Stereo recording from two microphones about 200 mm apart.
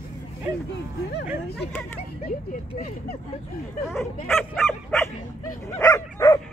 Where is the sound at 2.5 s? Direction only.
50° left (ahead or behind).